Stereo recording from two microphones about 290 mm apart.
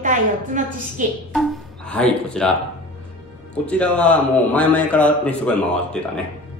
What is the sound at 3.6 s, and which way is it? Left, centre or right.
A man's voice, centre.